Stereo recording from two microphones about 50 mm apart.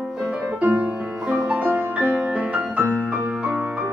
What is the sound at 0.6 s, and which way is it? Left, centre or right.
Music, right.